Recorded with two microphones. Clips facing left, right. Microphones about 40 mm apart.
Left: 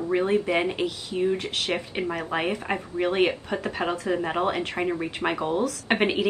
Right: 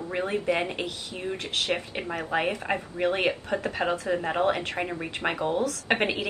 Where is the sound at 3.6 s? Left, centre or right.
Centre.